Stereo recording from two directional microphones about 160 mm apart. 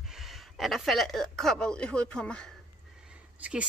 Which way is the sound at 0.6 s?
Centre (ahead or behind).